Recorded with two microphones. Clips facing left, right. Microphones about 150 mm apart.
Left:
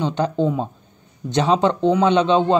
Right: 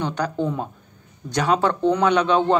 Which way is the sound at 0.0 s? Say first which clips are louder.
Left 4 dB; 20° left (ahead or behind).